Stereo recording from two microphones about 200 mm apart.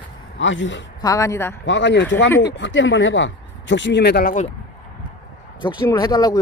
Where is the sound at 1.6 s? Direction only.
65° left (ahead or behind).